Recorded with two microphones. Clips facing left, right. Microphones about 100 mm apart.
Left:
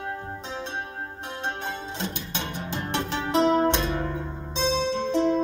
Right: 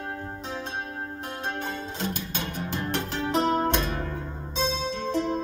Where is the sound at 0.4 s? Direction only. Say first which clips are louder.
Even; 45° right (ahead or behind).